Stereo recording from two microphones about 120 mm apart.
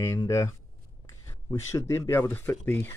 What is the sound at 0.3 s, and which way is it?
Speech, 25° left (ahead or behind).